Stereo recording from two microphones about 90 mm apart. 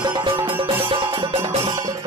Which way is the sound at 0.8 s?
75° right (ahead or behind).